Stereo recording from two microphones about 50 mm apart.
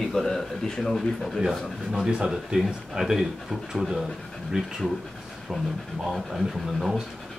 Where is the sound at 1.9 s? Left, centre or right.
Centre.